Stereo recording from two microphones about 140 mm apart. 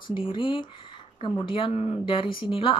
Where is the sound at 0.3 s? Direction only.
35° left (ahead or behind).